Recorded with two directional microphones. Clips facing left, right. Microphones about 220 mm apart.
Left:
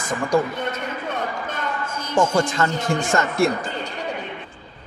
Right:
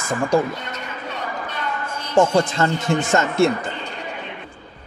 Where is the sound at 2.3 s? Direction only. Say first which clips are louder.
Right 2 dB; 25° right (ahead or behind).